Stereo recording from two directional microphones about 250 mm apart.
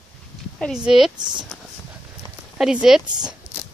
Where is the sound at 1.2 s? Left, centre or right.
Centre.